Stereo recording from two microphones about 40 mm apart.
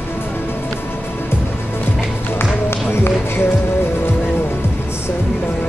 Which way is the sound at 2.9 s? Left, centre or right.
Left.